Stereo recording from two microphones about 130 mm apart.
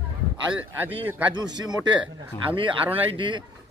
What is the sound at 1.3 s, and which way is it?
Speech, 30° right (ahead or behind).